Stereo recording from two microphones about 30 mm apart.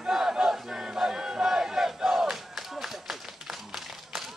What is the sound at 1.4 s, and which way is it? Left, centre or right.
Battle cry, centre.